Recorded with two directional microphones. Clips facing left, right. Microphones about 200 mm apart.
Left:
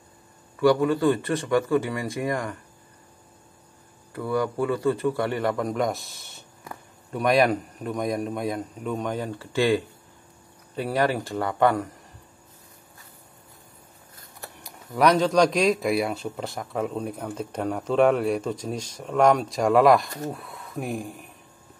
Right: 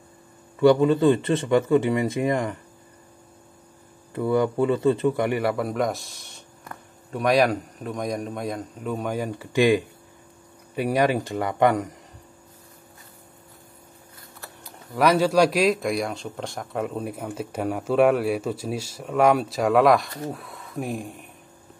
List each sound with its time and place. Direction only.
0.6 s speech: 25° right (ahead or behind)
4.1 s speech: 25° right (ahead or behind)
15.0 s speech: 5° right (ahead or behind)